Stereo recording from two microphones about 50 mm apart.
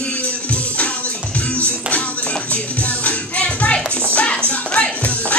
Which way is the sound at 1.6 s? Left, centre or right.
Left.